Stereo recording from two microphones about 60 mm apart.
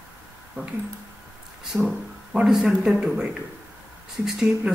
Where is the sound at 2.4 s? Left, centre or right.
Centre.